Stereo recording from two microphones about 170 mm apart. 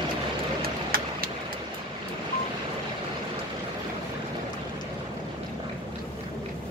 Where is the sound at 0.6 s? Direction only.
60° right (ahead or behind).